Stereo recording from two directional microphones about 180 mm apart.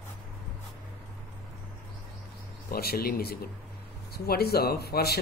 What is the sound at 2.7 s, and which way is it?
Speech, 60° left (ahead or behind).